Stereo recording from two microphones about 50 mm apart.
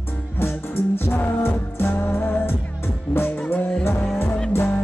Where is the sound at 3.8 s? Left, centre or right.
Left.